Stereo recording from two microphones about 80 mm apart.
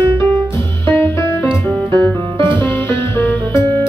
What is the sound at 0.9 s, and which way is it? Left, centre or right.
Music, left.